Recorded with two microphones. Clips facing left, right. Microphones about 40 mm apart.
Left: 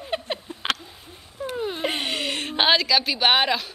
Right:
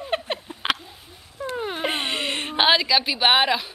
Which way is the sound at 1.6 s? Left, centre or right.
Right.